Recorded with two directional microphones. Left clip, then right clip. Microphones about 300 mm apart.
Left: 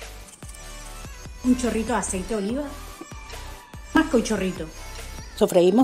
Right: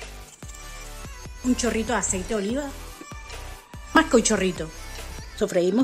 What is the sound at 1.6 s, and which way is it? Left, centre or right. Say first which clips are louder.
Speech: even; centre.